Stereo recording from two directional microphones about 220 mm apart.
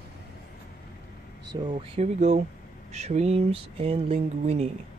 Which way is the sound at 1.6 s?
25° right (ahead or behind).